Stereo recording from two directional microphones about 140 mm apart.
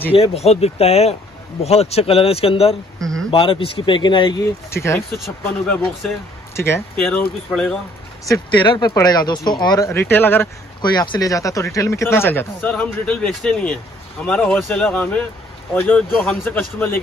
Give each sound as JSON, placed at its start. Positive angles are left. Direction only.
{"t": 0.1, "sound": "speech", "side_deg": 45}
{"t": 3.0, "sound": "a sound", "side_deg": 5}
{"t": 3.3, "sound": "speech", "side_deg": 40}
{"t": 4.6, "sound": "speech", "side_deg": 20}
{"t": 5.1, "sound": "speech", "side_deg": 0}
{"t": 6.5, "sound": "speech", "side_deg": 15}
{"t": 7.5, "sound": "speech", "side_deg": 5}
{"t": 8.5, "sound": "speech", "side_deg": 35}
{"t": 10.8, "sound": "speech", "side_deg": 30}